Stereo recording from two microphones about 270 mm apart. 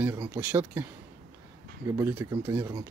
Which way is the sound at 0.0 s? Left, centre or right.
Centre.